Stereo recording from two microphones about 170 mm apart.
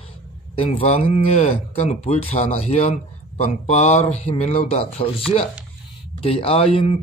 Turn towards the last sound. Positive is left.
turn(degrees=35)  # may be behind; listen again after turning